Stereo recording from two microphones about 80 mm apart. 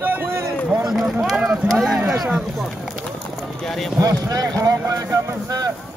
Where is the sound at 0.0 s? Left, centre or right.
Right.